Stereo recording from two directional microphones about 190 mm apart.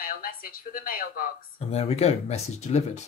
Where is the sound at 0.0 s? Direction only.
50° left (ahead or behind).